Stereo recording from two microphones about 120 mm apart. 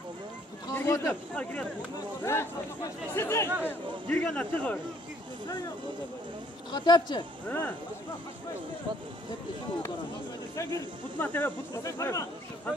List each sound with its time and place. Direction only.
0.7 s speech: 20° left (ahead or behind)
2.2 s speech: 20° left (ahead or behind)
3.6 s speech: 10° left (ahead or behind)
6.7 s speech: 35° left (ahead or behind)
7.4 s speech: 15° left (ahead or behind)
10.5 s speech: 25° left (ahead or behind)
11.1 s speech: 15° left (ahead or behind)
11.8 s speech: 25° left (ahead or behind)